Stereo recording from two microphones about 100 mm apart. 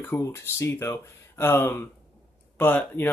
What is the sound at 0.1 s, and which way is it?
Speech, 25° left (ahead or behind).